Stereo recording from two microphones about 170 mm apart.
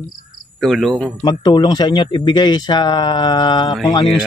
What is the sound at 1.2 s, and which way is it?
Speech, 25° left (ahead or behind).